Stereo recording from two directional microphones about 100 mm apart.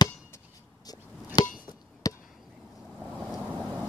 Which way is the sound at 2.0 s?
35° left (ahead or behind).